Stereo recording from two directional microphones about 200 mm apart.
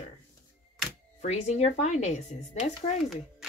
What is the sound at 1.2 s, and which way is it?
Speech, 35° left (ahead or behind).